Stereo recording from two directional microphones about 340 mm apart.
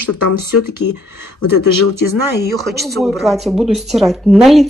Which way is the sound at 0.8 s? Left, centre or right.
Left.